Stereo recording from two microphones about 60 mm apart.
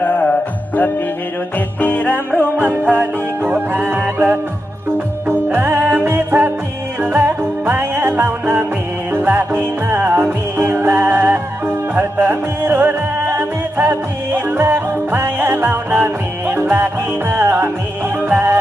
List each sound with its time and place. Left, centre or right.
0.0 s music: left
2.5 s music: right
5.3 s music: right
9.9 s music: right
10.2 s music: right